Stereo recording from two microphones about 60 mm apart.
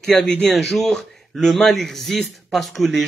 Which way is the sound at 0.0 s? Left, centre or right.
Centre.